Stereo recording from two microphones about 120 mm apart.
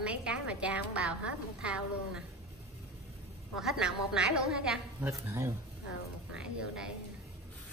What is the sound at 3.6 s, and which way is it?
A woman's voice, 5° right (ahead or behind).